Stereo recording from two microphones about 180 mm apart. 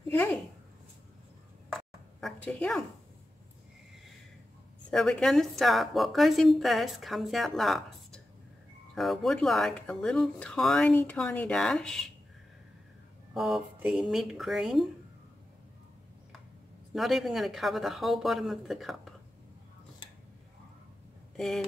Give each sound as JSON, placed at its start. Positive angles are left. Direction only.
{"t": 0.1, "sound": "a sound", "side_deg": 10}
{"t": 1.7, "sound": "a sound", "side_deg": 0}
{"t": 4.9, "sound": "a woman's voice", "side_deg": 5}
{"t": 13.3, "sound": "a woman's voice", "side_deg": 0}
{"t": 16.9, "sound": "a woman's voice", "side_deg": 0}
{"t": 21.4, "sound": "a woman's voice", "side_deg": 0}